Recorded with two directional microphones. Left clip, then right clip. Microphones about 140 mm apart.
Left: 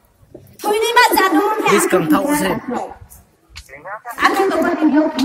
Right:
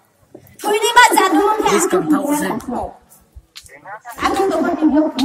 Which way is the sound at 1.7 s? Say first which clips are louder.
Left 1 dB; 85° left.